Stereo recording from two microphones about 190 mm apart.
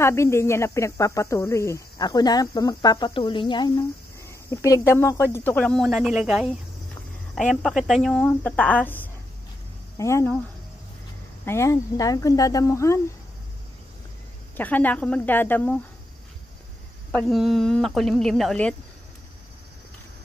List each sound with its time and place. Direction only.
0.0 s speech: 15° left (ahead or behind); by 6.5 s centre (ahead or behind)
7.6 s speech: centre (ahead or behind); by 10.3 s 15° left (ahead or behind)
11.4 s speech: 15° left (ahead or behind)
14.6 s speech: 10° left (ahead or behind)
17.1 s speech: 5° left (ahead or behind)